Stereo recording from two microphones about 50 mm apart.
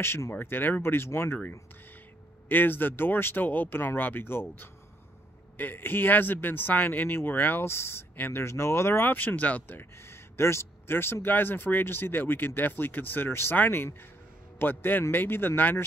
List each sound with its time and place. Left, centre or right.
0.3 s speech: left
2.4 s speech: left
9.0 s speech: left
9.7 s speech: left